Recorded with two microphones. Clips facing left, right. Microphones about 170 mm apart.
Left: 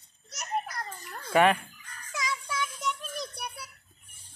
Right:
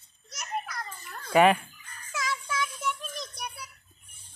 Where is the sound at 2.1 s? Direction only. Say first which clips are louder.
Right 1 dB; 15° left (ahead or behind).